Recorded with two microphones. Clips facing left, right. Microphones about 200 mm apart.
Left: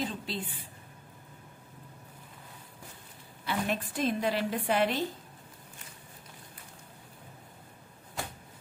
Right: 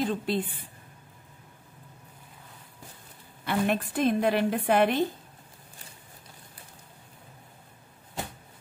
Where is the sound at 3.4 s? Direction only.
55° right (ahead or behind).